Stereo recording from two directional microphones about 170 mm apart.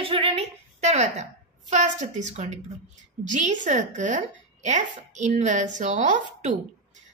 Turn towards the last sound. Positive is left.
turn(degrees=-45)  # may be behind; listen again after turning